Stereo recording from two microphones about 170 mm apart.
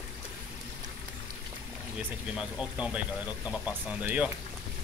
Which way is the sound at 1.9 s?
5° right (ahead or behind).